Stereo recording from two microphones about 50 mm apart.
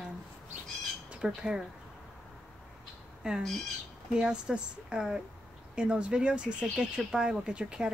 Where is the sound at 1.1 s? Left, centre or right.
Centre.